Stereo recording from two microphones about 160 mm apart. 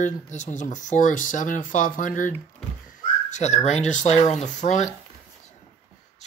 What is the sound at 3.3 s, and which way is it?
Speech, 45° left (ahead or behind).